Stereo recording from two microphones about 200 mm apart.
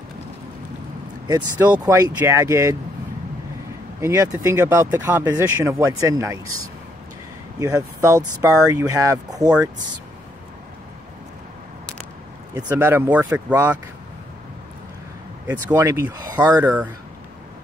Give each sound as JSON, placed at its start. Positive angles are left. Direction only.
{"t": 1.2, "sound": "speech", "side_deg": -20}
{"t": 4.0, "sound": "speech", "side_deg": -15}
{"t": 7.5, "sound": "speech", "side_deg": -15}
{"t": 12.5, "sound": "speech", "side_deg": -10}
{"t": 15.4, "sound": "speech", "side_deg": -15}